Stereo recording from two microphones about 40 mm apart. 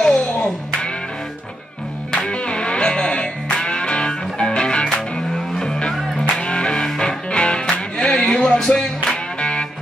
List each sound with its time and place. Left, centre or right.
0.0 s music: centre
2.1 s music: left